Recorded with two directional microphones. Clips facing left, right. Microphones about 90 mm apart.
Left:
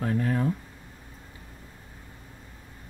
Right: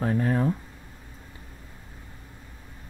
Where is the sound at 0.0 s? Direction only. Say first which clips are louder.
Right 2 dB; 30° right (ahead or behind).